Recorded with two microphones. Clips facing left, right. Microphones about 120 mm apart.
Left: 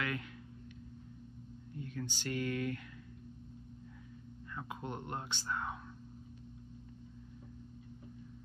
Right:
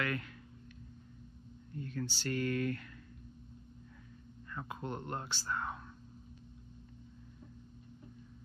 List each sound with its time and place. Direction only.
0.0 s speech: 15° left (ahead or behind)
1.8 s speech: 15° left (ahead or behind)
4.6 s speech: 10° left (ahead or behind)